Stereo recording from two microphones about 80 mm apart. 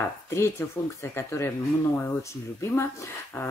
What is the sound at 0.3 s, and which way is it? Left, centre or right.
Speech, left.